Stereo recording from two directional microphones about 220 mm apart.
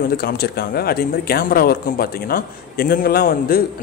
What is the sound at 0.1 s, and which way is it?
Speech, 45° left (ahead or behind).